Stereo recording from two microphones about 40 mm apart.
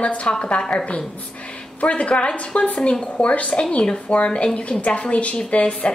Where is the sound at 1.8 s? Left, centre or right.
Left.